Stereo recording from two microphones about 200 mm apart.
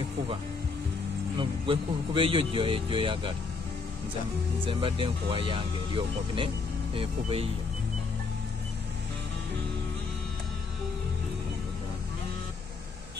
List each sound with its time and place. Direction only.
1.4 s speech: 25° right (ahead or behind)
4.6 s speech: 25° right (ahead or behind)